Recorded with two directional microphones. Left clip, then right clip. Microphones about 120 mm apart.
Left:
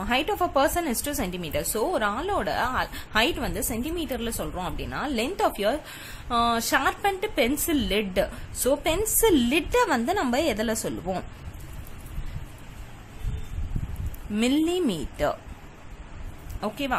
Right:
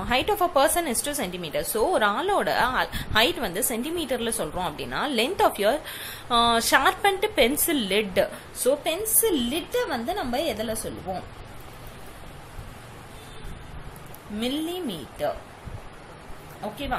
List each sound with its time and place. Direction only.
0.0 s a woman's voice: 30° left (ahead or behind)
8.5 s a woman's voice: 50° left (ahead or behind); by 11.2 s 75° left (ahead or behind)
14.4 s a woman's voice: 60° left (ahead or behind)